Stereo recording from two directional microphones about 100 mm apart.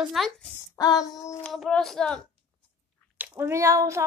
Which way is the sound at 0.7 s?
35° left (ahead or behind).